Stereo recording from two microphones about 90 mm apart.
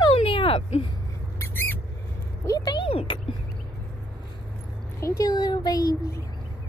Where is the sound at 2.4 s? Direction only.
45° left (ahead or behind).